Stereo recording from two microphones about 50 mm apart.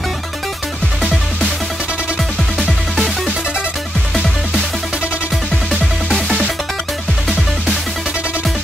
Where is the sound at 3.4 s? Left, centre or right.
Centre.